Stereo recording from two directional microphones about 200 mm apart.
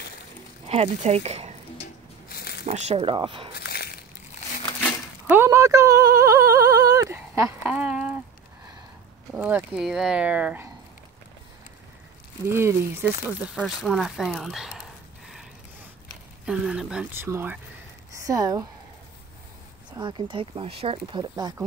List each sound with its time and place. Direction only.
0.7 s speech: 30° right (ahead or behind)
2.2 s a sound: 50° left (ahead or behind)
2.6 s speech: 30° right (ahead or behind)
3.5 s crushing: 50° left (ahead or behind)
5.3 s a sound: 15° right (ahead or behind)
9.3 s speech: 5° right (ahead or behind)
12.4 s speech: 10° right (ahead or behind)
16.4 s speech: 5° right (ahead or behind)
20.0 s speech: 25° right (ahead or behind)